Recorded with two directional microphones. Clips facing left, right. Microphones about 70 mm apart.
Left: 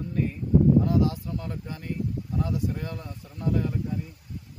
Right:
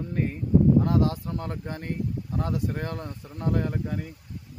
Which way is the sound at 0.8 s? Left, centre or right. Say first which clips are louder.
Even; right.